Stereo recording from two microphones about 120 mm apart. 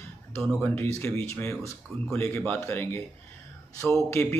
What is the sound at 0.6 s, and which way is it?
A man's voice, 20° left (ahead or behind).